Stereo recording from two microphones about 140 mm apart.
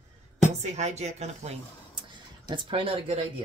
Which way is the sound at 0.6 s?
55° right (ahead or behind).